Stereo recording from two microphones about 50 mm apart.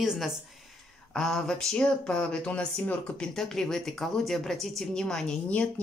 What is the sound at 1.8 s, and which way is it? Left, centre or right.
Speech, left.